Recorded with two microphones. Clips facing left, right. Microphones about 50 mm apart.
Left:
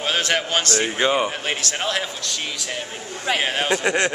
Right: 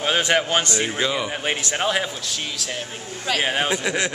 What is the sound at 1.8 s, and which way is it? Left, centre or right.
Speech, centre.